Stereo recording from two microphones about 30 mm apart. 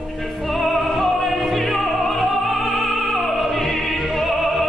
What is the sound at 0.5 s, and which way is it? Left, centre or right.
Music, centre.